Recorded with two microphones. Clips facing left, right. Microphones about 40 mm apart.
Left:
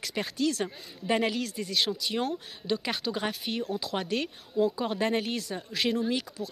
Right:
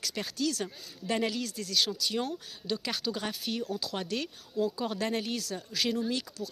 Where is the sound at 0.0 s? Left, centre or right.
Centre.